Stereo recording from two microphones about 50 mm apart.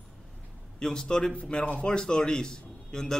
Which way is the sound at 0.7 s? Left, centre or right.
Centre.